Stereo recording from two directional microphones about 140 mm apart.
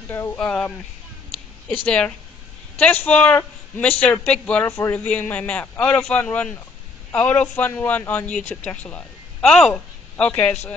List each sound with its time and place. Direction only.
0.1 s speech: 15° left (ahead or behind)
1.9 s speech: 5° left (ahead or behind)
10.3 s speech: 15° left (ahead or behind)